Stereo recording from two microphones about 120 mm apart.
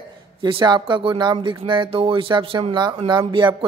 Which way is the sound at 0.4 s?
40° right (ahead or behind).